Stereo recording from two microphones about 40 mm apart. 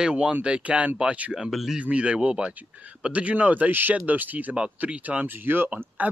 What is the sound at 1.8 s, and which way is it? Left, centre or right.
Speech, right.